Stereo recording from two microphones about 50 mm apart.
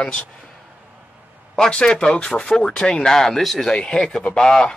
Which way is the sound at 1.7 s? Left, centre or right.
Centre.